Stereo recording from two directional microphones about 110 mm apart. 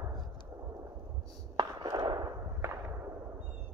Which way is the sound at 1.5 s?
45° right (ahead or behind).